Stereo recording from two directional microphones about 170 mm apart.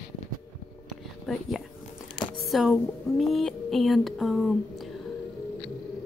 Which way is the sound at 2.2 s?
Centre (ahead or behind).